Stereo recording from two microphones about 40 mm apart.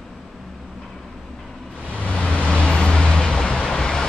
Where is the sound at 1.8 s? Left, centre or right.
Left.